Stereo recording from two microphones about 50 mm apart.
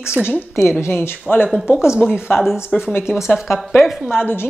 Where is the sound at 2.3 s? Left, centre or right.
Centre.